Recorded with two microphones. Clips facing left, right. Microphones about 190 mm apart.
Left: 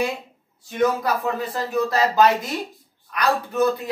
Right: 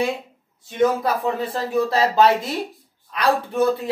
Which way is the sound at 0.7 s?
25° right (ahead or behind).